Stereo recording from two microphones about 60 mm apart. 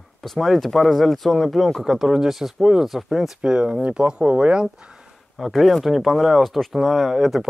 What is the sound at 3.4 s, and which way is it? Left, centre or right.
Speech, centre.